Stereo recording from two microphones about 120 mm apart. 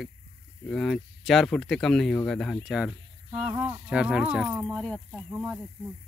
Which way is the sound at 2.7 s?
5° right (ahead or behind).